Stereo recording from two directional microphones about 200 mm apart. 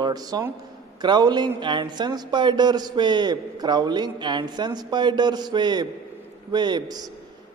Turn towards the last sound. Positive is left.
turn(degrees=-20)  # may be behind; listen again after turning